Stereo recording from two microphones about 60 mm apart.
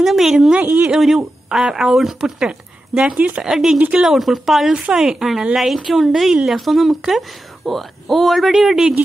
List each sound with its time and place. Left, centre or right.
0.0 s a woman's voice: centre
0.6 s speech: right
0.8 s speech: centre
3.2 s speech: right
3.4 s a woman's voice: centre